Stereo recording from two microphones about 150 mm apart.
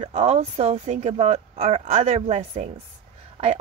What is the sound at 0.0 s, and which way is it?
A woman's voice, 50° right (ahead or behind).